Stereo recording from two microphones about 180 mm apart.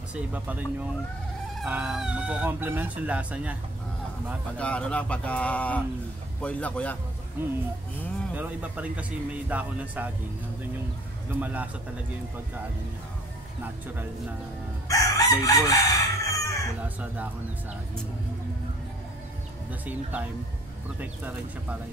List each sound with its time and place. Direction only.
0.1 s speech: 10° right (ahead or behind)
4.6 s speech: 5° left (ahead or behind)
7.4 s speech: 10° right (ahead or behind)
11.3 s speech: 10° right (ahead or behind)
14.9 s crowing: 20° left (ahead or behind)
19.7 s speech: 10° right (ahead or behind)